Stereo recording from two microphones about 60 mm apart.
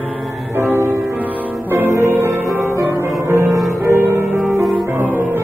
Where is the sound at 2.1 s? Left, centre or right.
Right.